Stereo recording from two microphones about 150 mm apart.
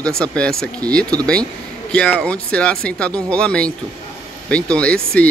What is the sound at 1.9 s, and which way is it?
Speech, 5° left (ahead or behind).